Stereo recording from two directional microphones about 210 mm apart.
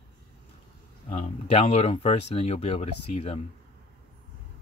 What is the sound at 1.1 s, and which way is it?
Speech, 30° left (ahead or behind).